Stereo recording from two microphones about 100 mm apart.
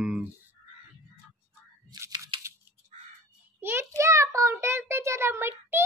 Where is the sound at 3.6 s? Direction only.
25° right (ahead or behind).